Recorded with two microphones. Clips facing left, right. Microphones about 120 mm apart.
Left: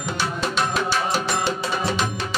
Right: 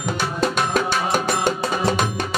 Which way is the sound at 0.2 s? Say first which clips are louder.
Right 2 dB; 45° right (ahead or behind).